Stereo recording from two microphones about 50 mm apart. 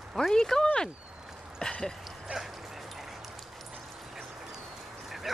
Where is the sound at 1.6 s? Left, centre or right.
Centre.